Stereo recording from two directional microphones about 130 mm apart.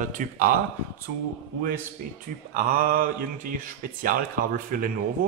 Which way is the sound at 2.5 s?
90° right.